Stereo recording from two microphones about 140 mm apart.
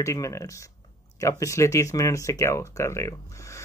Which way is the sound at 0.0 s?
20° left (ahead or behind).